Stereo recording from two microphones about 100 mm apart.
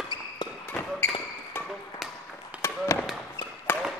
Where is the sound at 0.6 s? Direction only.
20° left (ahead or behind).